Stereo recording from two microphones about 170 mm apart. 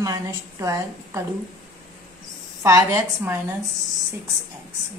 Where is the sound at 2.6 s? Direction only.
15° right (ahead or behind).